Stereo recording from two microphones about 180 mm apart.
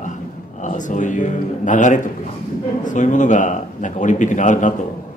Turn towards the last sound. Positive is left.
turn(degrees=45)  # may be behind; listen again after turning